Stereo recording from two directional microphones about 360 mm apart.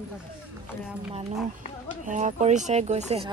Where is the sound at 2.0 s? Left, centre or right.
Centre.